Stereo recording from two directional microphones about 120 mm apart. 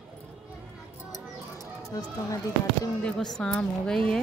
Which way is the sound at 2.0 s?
30° left (ahead or behind).